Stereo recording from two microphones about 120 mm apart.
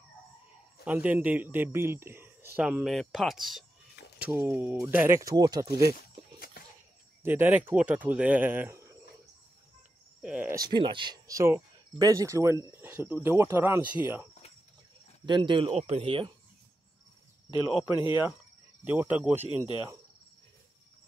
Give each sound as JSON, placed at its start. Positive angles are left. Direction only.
{"t": 0.8, "sound": "speech", "side_deg": -10}
{"t": 2.6, "sound": "speech", "side_deg": -5}
{"t": 4.5, "sound": "speech", "side_deg": -15}
{"t": 5.0, "sound": "speech", "side_deg": -25}
{"t": 7.2, "sound": "speech", "side_deg": -15}
{"t": 10.2, "sound": "speech", "side_deg": -10}
{"t": 10.7, "sound": "speech", "side_deg": -40}
{"t": 11.2, "sound": "speech", "side_deg": -25}
{"t": 15.2, "sound": "speech", "side_deg": -40}
{"t": 15.7, "sound": "speech", "side_deg": -60}
{"t": 17.9, "sound": "speech", "side_deg": 40}
{"t": 18.9, "sound": "speech", "side_deg": -15}